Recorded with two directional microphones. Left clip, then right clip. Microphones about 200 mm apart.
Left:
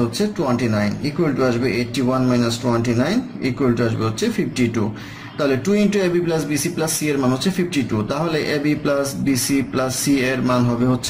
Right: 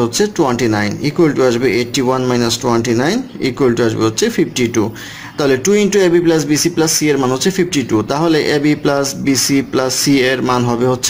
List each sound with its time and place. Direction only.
0.2 s a man's voice: 45° right (ahead or behind)